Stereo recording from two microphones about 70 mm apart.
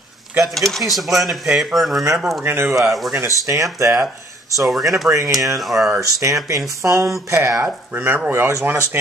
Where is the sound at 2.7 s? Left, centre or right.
Centre.